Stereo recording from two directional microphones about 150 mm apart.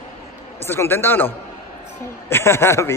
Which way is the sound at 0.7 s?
15° left (ahead or behind).